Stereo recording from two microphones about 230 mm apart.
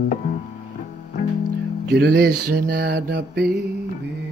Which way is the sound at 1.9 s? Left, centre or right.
Right.